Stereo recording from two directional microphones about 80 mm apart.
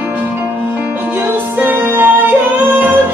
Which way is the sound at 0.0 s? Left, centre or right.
Centre.